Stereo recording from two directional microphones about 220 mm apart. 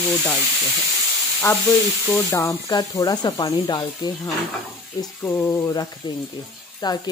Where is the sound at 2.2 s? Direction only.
15° left (ahead or behind).